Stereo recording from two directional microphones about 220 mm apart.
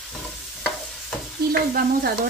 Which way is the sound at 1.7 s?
40° right (ahead or behind).